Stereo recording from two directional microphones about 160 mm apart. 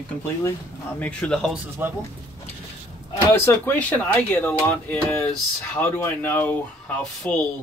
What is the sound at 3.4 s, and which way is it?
Speech, 10° left (ahead or behind).